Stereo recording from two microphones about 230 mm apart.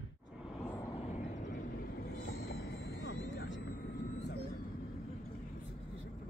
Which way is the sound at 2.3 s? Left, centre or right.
Left.